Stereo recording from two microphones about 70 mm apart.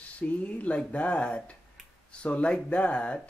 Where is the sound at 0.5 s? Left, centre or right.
Centre.